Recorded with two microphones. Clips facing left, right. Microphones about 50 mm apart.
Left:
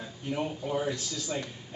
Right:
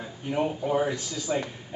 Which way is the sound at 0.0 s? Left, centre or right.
Centre.